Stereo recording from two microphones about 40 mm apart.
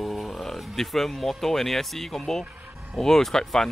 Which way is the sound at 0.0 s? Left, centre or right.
Centre.